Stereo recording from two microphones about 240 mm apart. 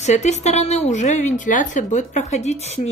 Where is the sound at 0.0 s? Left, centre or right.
Left.